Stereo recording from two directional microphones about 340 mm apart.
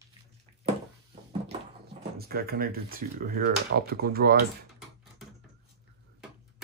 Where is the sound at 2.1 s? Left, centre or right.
Right.